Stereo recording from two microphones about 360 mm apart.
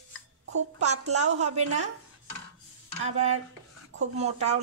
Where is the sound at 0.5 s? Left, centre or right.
Right.